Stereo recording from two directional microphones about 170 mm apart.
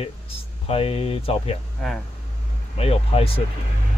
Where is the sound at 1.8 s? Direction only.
Centre (ahead or behind).